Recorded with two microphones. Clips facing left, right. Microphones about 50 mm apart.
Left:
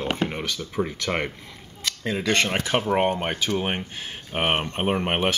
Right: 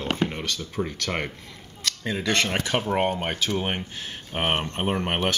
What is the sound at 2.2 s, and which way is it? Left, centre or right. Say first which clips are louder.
Speech: left 2 dB; left.